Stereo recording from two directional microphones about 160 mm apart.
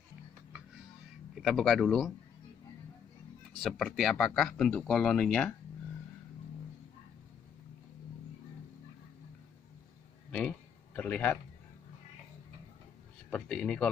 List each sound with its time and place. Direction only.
1.3 s speech: centre (ahead or behind)
3.6 s speech: centre (ahead or behind)
11.0 s a man's voice: 10° left (ahead or behind)
13.3 s speech: 5° left (ahead or behind)